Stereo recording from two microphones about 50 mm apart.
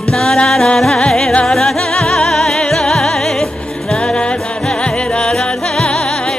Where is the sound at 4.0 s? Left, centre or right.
Centre.